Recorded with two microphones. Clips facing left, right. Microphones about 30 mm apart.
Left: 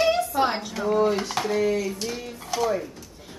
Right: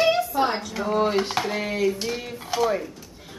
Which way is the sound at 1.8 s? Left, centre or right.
Centre.